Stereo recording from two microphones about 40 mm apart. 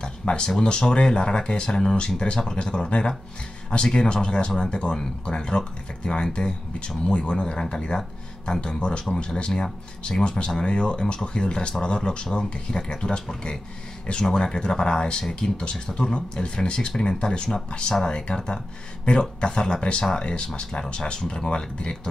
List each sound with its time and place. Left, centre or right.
0.0 s speech: left